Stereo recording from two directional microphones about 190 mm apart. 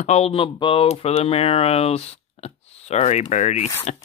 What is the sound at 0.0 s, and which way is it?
Speech, 35° left (ahead or behind).